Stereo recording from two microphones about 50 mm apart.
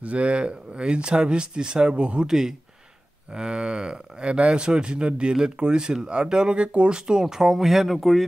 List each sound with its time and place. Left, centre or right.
0.0 s speech: right; by 8.3 s centre